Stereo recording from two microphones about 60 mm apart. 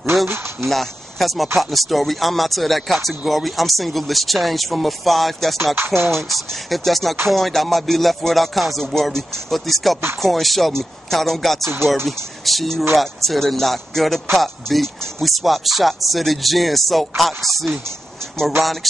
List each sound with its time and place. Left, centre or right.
0.1 s speech: centre
5.8 s music: right
6.1 s speech: centre